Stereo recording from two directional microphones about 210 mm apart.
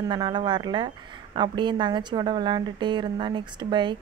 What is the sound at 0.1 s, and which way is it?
A woman's voice, 20° right (ahead or behind).